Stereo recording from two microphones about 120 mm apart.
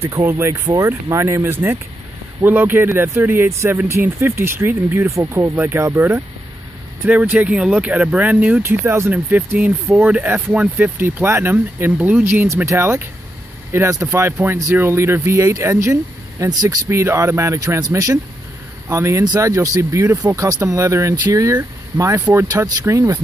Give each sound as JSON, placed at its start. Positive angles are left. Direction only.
{"t": 0.0, "sound": "speech", "side_deg": -20}